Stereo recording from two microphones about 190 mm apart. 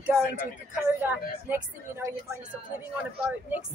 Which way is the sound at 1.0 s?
10° right (ahead or behind).